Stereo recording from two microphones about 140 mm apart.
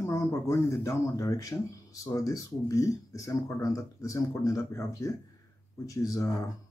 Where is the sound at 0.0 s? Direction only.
20° left (ahead or behind).